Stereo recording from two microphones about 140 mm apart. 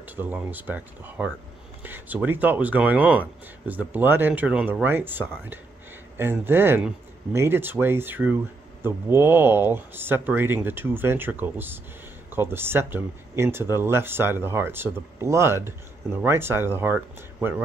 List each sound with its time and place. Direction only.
0.0 s speech: 15° right (ahead or behind)